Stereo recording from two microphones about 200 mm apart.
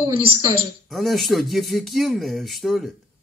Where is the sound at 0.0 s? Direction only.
25° right (ahead or behind).